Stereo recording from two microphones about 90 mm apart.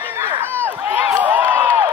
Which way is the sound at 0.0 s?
25° right (ahead or behind).